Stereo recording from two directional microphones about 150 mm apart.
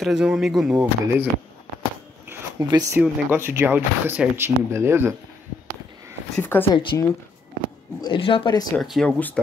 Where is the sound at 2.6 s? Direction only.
25° right (ahead or behind).